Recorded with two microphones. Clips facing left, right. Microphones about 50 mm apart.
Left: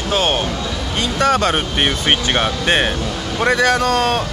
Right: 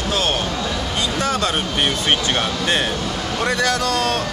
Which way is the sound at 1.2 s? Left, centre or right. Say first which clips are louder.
Left 7 dB; left.